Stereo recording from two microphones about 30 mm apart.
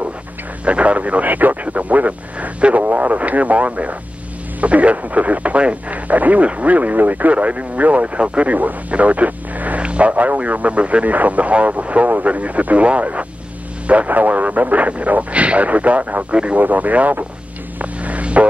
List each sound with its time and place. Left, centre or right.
0.7 s speech: right
1.2 s speech: right
5.9 s speech: right
7.3 s speech: right
8.9 s radio: right
9.8 s a sound: right
10.1 s speech: right
11.1 s speech: right
14.0 s speech: right
16.3 s speech: right
16.5 s speech: right
17.7 s vehicle: right